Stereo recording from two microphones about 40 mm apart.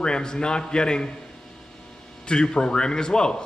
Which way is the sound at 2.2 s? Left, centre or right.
Centre.